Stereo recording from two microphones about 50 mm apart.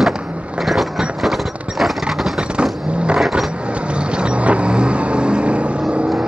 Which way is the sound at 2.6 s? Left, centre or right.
Right.